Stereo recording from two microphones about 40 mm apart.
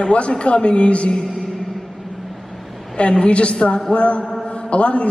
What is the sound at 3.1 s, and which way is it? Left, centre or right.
Speech, left.